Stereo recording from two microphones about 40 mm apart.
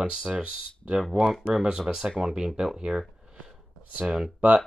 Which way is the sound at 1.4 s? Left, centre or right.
Centre.